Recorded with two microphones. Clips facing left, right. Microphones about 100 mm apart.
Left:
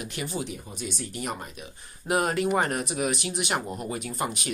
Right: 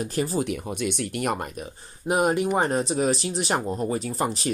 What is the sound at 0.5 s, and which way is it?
Speech, 65° right (ahead or behind).